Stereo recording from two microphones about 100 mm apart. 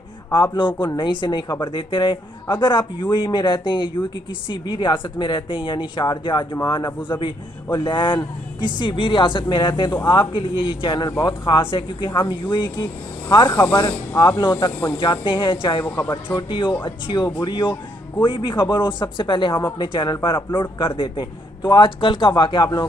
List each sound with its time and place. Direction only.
0.3 s a woman's voice: 50° left (ahead or behind)
15.0 s a man's voice: 55° left (ahead or behind)
15.8 s speech: 25° left (ahead or behind)
16.3 s a woman's voice: 55° left (ahead or behind)